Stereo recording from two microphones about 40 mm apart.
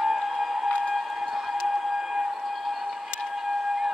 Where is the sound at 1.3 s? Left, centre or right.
Centre.